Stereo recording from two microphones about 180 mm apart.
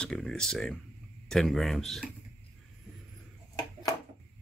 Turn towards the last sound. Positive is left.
turn(degrees=20)  # may be behind; listen again after turning